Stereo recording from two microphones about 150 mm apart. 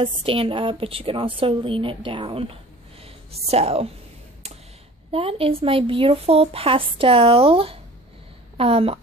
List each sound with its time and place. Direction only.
0.0 s a woman's voice: 40° right (ahead or behind)
3.0 s a sound: 40° right (ahead or behind)
5.1 s a woman's voice: 40° right (ahead or behind)